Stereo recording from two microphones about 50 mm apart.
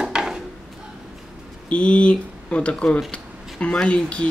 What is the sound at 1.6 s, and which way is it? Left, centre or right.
Speech, left.